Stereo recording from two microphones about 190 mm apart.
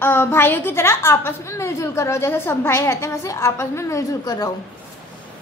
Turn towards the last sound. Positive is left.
turn(degrees=20)  # may be behind; listen again after turning